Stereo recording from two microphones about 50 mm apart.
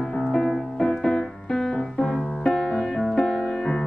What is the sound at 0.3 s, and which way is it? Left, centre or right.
Music, centre.